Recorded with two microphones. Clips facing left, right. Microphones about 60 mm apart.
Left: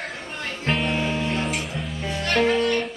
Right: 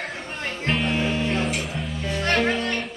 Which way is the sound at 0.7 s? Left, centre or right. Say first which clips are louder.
Even; centre.